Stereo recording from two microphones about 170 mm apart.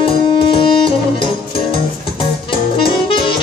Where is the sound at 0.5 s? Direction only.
30° left (ahead or behind).